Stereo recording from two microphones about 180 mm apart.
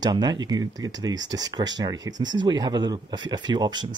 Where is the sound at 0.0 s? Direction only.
25° right (ahead or behind).